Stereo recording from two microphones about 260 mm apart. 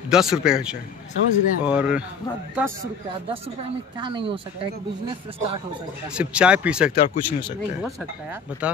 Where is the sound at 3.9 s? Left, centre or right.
Centre.